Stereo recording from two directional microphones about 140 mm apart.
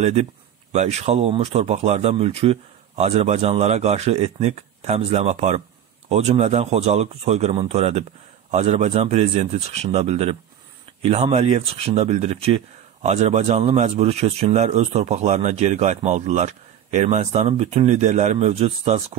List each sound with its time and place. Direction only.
0.0 s speech: 50° right (ahead or behind)